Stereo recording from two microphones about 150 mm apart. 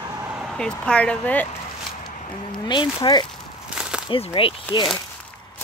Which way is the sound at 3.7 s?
5° right (ahead or behind).